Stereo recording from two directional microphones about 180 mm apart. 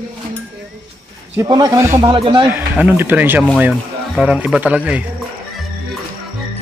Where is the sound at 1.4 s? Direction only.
25° right (ahead or behind).